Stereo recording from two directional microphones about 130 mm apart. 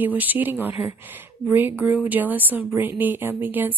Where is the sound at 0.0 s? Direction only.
15° right (ahead or behind).